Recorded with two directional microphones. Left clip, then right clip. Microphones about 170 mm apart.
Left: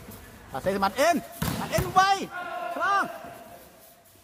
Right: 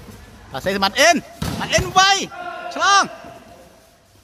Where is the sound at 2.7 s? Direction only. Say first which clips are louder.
Right 10 dB; 25° right (ahead or behind).